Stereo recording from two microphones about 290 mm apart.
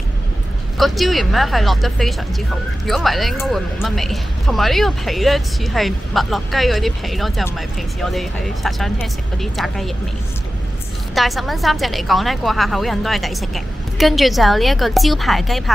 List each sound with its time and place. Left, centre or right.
0.7 s speech: centre
11.1 s speech: centre